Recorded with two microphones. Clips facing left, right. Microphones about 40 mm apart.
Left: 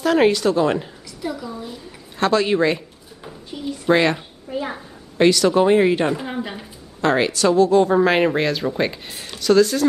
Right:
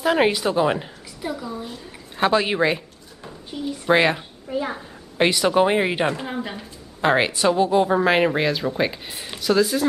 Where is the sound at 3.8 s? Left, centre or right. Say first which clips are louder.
Left 1 dB; centre.